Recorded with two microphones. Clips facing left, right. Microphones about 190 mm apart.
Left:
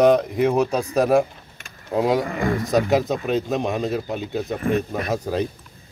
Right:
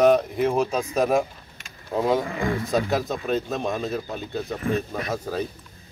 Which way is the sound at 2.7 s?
20° left (ahead or behind).